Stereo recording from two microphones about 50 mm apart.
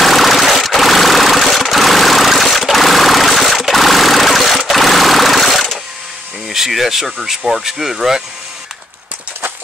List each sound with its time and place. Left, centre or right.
0.0 s vehicle: centre
6.5 s speech: centre